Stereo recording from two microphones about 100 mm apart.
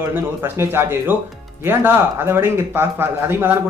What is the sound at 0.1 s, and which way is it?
Speech, 25° right (ahead or behind).